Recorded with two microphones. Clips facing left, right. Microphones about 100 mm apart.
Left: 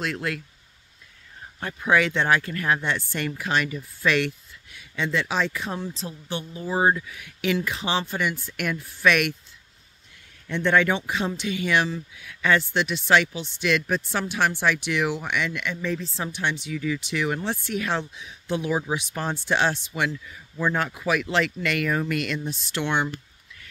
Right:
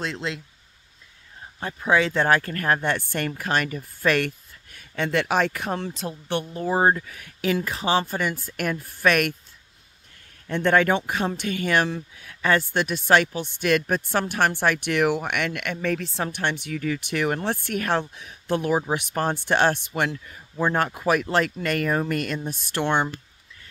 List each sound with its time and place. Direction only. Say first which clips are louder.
0.0 s speech: left 1 dB; 20° right (ahead or behind)
1.6 s speech: even; 25° right (ahead or behind)
2.1 s speech: right 2 dB; 40° right (ahead or behind); by 6.4 s 60° right (ahead or behind)
6.5 s speech: right 1 dB; 50° right (ahead or behind)
10.4 s speech: right 1 dB; 45° right (ahead or behind)